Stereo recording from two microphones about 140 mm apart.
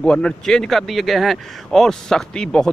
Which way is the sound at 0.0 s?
5° left (ahead or behind).